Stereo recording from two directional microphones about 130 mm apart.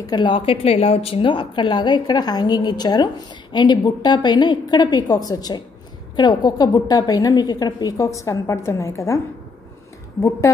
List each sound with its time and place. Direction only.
0.0 s a woman's voice: 35° left (ahead or behind)